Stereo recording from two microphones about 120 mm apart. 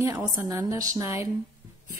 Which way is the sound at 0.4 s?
20° right (ahead or behind).